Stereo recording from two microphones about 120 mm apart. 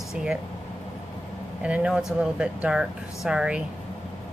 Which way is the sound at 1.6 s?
10° right (ahead or behind).